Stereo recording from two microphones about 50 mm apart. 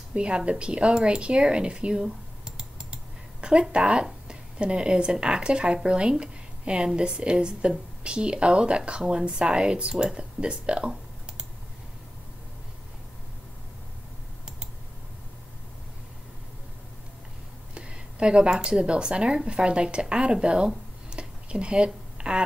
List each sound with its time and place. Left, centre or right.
0.1 s speech: right
17.7 s speech: centre